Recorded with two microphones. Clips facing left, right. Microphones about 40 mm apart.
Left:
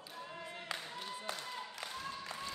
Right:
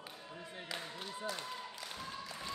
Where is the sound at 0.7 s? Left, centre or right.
Left.